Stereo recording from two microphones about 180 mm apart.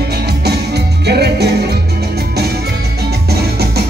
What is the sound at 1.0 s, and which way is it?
Music, 65° right (ahead or behind).